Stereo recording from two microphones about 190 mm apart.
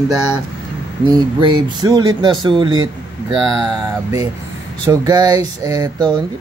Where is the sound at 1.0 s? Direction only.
25° right (ahead or behind).